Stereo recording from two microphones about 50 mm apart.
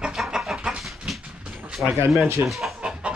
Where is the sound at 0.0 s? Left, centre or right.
Centre.